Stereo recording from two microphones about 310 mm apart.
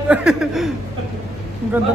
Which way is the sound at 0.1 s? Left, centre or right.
Centre.